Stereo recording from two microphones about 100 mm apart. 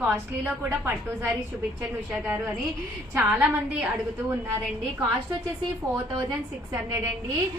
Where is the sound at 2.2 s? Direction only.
15° right (ahead or behind).